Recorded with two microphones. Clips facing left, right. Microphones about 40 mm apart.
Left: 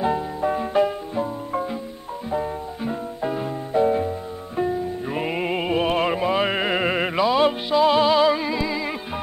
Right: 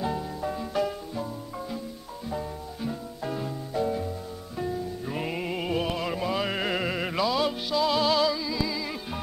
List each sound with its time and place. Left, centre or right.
0.0 s music: left
8.3 s music: left